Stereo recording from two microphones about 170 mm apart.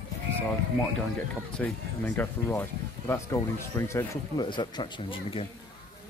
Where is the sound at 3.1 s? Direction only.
15° left (ahead or behind).